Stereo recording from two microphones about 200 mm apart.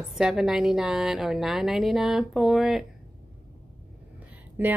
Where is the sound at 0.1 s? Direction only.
Centre (ahead or behind).